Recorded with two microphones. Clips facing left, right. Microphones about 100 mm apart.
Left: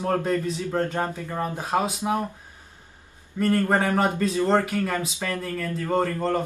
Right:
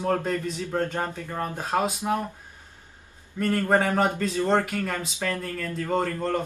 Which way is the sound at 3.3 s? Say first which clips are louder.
Left 1 dB; 10° left (ahead or behind).